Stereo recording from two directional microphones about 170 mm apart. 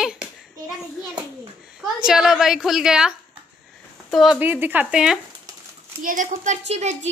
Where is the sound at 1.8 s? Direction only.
5° right (ahead or behind).